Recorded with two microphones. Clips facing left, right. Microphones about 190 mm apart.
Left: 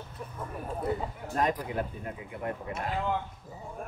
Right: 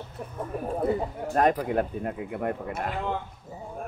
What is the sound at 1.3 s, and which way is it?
Speech, 60° right (ahead or behind).